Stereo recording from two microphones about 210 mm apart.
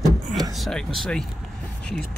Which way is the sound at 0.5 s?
Centre (ahead or behind).